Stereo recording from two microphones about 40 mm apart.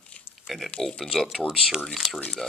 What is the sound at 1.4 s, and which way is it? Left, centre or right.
Speech, left.